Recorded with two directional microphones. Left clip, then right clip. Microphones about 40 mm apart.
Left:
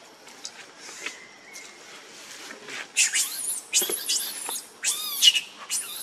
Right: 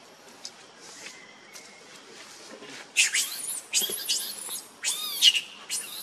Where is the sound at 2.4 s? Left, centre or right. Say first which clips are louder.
Left 8 dB; left.